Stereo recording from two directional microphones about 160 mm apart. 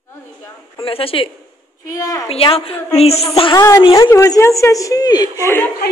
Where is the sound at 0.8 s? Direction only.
35° left (ahead or behind).